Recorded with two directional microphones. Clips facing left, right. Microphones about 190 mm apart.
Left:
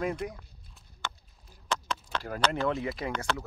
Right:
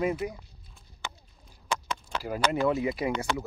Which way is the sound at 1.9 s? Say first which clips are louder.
Right 2 dB; 10° right (ahead or behind).